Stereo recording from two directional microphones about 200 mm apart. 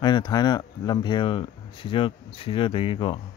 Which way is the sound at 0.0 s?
20° left (ahead or behind).